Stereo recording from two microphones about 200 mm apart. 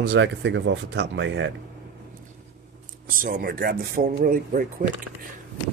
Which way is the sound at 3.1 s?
40° right (ahead or behind).